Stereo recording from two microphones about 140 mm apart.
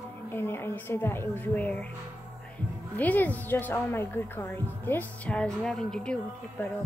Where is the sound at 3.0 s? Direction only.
10° left (ahead or behind).